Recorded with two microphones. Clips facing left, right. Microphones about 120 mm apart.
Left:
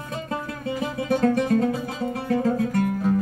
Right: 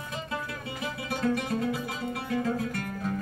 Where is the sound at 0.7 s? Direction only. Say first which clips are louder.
Left 10 dB; 40° left (ahead or behind).